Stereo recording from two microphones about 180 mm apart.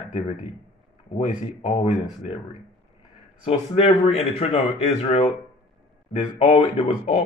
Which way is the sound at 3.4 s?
35° left (ahead or behind).